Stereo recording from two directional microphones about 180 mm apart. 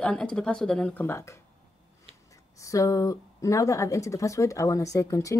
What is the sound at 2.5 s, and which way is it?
Speech, 20° left (ahead or behind).